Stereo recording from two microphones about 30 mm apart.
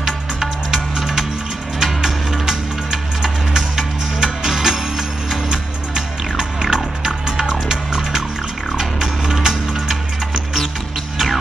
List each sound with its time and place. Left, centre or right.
0.0 s music: centre
2.4 s music: centre